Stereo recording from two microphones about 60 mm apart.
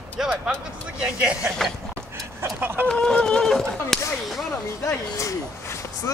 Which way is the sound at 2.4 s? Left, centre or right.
Right.